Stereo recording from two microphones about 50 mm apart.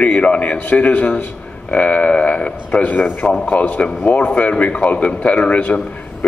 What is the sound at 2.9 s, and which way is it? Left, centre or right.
Speech, left.